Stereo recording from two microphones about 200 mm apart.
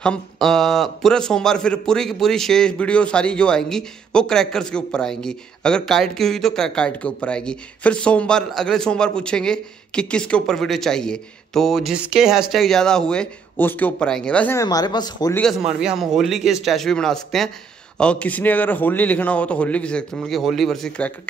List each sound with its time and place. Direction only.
0.0 s a man's voice: 5° left (ahead or behind); by 15.3 s 20° left (ahead or behind)
15.3 s a man's voice: 5° left (ahead or behind)